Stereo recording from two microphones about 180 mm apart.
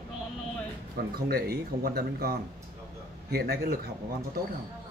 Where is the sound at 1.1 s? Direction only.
55° right (ahead or behind).